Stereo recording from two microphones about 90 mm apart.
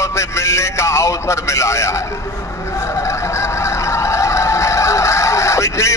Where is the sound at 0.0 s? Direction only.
30° left (ahead or behind).